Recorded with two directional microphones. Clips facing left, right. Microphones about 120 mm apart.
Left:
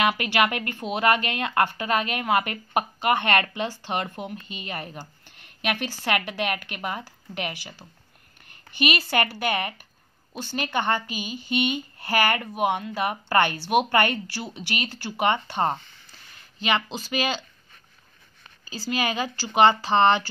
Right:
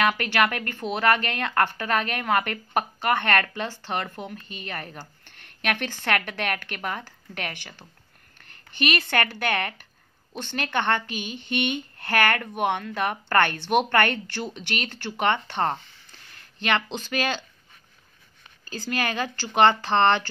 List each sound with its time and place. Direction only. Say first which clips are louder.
0.0 s speech: even; 10° left (ahead or behind)
18.7 s speech: left 1 dB; 10° left (ahead or behind)